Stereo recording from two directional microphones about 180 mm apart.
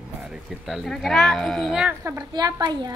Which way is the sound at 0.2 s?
5° right (ahead or behind).